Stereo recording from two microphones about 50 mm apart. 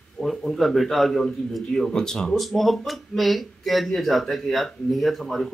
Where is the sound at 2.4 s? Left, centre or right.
Centre.